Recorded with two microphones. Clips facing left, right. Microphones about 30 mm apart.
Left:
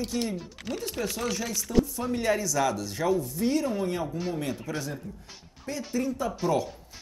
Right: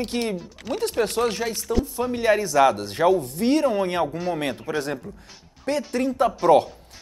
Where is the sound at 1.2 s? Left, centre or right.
Right.